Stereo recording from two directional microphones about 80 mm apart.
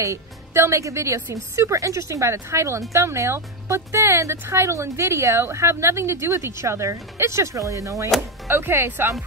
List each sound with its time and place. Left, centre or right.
0.0 s speech: right
8.5 s speech: right